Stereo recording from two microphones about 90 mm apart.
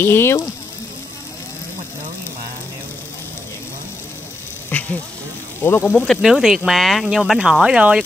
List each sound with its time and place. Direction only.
0.0 s speech: 25° left (ahead or behind)
4.7 s a sound: 20° left (ahead or behind)
5.6 s speech: 25° left (ahead or behind)
6.0 s speech: 5° right (ahead or behind)